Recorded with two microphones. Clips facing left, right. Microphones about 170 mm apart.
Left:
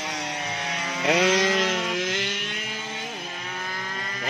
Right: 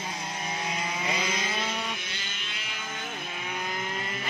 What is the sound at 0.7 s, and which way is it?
Chainsaw, 75° left (ahead or behind).